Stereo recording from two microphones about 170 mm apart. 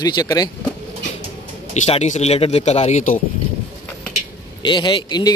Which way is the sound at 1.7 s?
40° left (ahead or behind).